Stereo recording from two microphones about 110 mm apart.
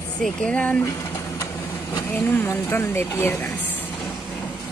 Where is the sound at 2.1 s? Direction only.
20° left (ahead or behind).